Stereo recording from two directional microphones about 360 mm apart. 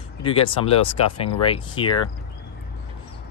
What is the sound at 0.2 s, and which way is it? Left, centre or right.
Speech, centre.